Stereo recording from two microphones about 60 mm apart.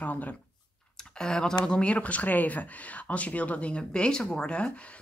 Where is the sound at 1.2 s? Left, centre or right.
Centre.